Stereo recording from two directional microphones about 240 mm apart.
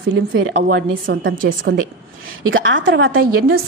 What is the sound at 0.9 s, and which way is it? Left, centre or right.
Speech, right.